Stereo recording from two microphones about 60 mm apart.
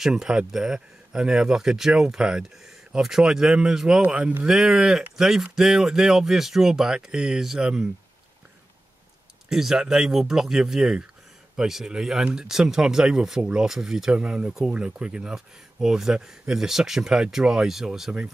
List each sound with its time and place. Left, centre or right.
0.0 s speech: centre
4.0 s speech: right
4.5 s speech: centre
9.5 s speech: centre
14.1 s speech: centre